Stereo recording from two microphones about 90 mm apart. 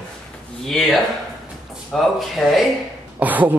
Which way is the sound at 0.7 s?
Centre (ahead or behind).